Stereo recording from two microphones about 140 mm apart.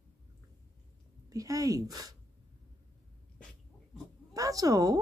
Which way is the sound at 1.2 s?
25° right (ahead or behind).